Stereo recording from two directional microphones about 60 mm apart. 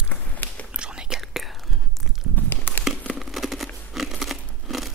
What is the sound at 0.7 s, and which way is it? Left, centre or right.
Whispering, centre.